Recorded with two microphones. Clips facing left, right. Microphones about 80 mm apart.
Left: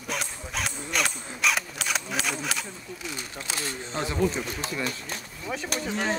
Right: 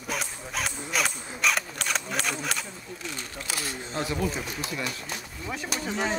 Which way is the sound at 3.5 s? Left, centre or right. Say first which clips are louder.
Left 1 dB; left.